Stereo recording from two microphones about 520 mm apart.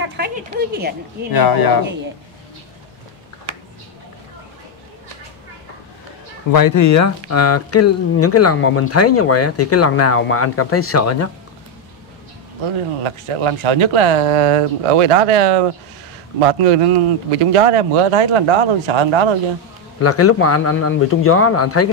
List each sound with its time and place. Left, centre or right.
0.2 s a woman's voice: centre
1.3 s speech: left
6.5 s speech: left
13.0 s speech: right
20.0 s speech: left